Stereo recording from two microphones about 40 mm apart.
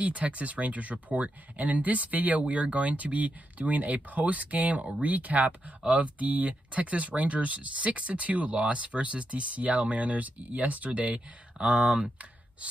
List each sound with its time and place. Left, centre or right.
0.0 s speech: right